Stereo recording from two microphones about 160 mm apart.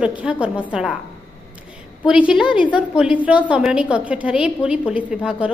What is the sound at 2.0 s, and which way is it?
A woman's voice, 5° right (ahead or behind).